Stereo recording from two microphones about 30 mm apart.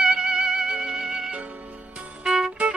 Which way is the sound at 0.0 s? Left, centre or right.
Right.